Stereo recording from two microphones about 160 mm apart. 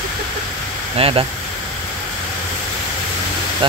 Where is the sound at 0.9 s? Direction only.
35° right (ahead or behind).